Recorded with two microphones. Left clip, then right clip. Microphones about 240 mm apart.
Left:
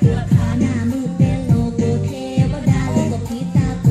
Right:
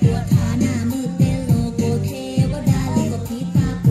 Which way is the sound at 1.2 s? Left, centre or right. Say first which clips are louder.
Left 2 dB; centre.